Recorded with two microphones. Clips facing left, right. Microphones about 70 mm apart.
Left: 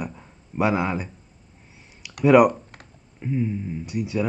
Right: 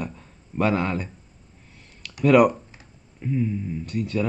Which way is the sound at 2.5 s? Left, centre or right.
Left.